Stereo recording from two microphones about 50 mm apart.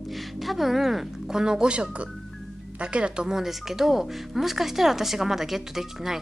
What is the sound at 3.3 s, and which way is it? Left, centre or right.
A woman's voice, centre.